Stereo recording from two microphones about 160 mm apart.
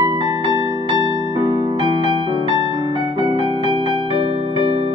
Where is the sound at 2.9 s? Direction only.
30° left (ahead or behind).